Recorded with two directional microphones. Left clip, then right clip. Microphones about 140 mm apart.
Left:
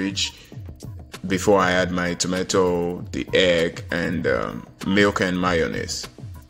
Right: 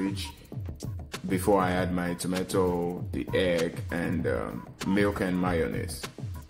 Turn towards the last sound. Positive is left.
turn(degrees=25)  # may be behind; listen again after turning